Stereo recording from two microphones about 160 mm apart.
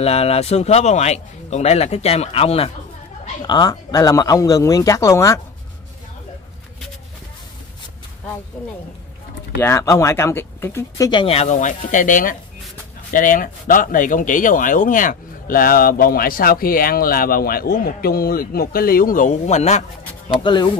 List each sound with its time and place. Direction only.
0.0 s a man's voice: 40° left (ahead or behind)
3.4 s speech: 25° left (ahead or behind)
9.6 s speech: 20° left (ahead or behind)
11.1 s speech: 35° left (ahead or behind)
20.3 s a man's voice: 30° left (ahead or behind)